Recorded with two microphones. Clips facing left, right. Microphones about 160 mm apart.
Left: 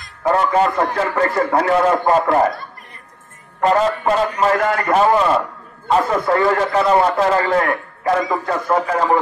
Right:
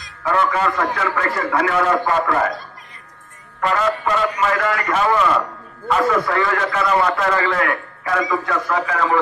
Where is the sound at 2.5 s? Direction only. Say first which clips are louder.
Even; 60° left (ahead or behind).